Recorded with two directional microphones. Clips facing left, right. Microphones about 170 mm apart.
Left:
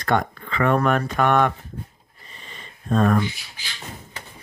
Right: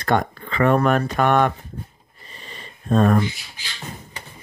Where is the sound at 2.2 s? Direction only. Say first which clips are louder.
Right 3 dB; 35° right (ahead or behind).